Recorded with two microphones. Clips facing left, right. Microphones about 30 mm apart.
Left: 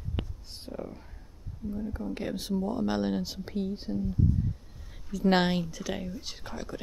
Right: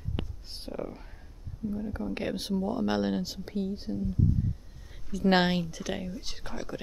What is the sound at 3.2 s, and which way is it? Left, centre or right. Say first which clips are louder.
Speech: even; centre.